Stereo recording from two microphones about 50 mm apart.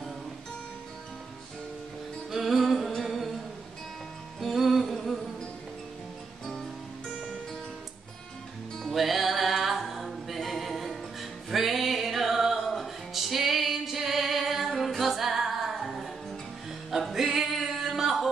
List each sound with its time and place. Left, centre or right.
2.3 s music: centre
3.0 s humming: centre
4.4 s music: centre
6.4 s music: centre
8.9 s a capella: centre
17.1 s music: centre